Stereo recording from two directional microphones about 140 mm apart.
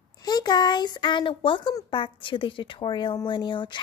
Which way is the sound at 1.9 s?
35° left (ahead or behind).